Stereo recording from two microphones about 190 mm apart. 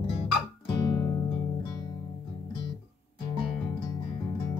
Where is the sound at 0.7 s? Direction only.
25° left (ahead or behind).